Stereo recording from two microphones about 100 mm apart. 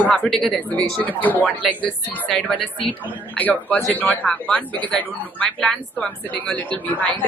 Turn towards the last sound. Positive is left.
turn(degrees=15)  # may be behind; listen again after turning